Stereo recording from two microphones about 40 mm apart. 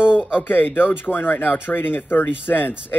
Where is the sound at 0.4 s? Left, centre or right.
Left.